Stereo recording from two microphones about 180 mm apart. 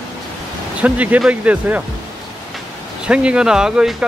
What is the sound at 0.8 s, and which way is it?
Speech, 10° right (ahead or behind).